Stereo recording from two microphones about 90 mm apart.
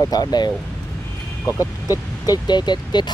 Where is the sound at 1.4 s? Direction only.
40° left (ahead or behind); by 3.1 s 55° left (ahead or behind).